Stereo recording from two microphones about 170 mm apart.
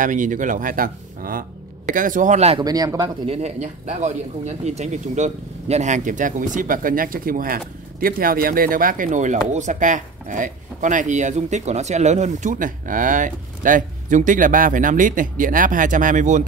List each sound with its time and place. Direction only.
0.0 s speech: 50° right (ahead or behind)
2.6 s speech: 20° right (ahead or behind)
3.3 s speech: 40° right (ahead or behind)